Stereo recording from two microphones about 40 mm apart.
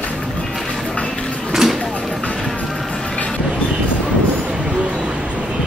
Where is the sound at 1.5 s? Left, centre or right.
Centre.